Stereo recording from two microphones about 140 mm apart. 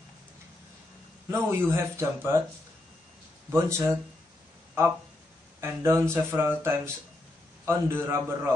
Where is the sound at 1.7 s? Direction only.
20° right (ahead or behind).